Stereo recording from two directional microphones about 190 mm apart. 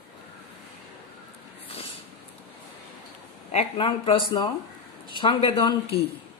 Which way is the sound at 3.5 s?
30° left (ahead or behind).